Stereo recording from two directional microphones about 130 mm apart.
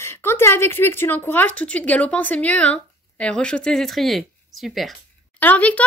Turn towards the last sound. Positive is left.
turn(degrees=10)  # may be behind; listen again after turning